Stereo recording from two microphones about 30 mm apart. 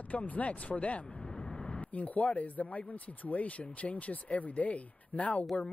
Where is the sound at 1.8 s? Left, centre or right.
Left.